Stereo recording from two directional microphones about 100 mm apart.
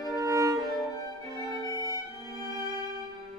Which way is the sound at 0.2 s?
35° right (ahead or behind).